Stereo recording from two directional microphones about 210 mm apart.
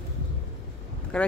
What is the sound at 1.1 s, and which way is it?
Speech, 5° left (ahead or behind).